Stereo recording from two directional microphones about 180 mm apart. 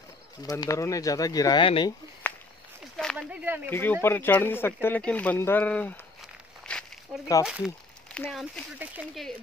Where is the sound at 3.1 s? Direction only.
10° right (ahead or behind).